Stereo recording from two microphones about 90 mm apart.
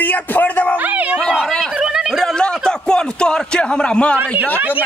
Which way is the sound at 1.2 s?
5° left (ahead or behind).